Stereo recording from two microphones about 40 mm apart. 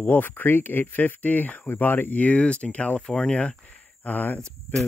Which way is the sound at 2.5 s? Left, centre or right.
Left.